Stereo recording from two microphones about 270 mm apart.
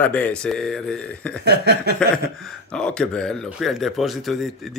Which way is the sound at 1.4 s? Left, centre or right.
Right.